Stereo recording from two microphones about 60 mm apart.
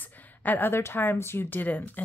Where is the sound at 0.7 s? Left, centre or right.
Left.